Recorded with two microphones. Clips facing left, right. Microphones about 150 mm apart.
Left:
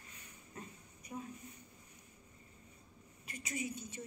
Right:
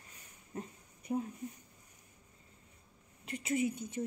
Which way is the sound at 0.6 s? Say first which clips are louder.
Right 7 dB; 60° right (ahead or behind).